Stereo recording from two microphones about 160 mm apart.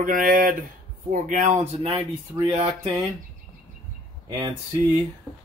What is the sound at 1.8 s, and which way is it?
Speech, 30° right (ahead or behind).